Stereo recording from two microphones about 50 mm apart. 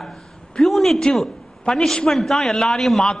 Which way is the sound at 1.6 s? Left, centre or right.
Centre.